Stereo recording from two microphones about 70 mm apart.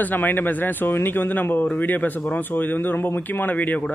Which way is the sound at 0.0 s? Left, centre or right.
Left.